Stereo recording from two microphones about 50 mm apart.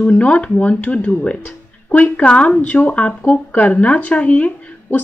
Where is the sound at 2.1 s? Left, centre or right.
Left.